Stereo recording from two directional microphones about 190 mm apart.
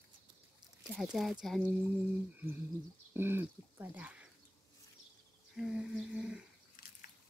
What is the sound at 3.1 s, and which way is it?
Speech, 10° right (ahead or behind).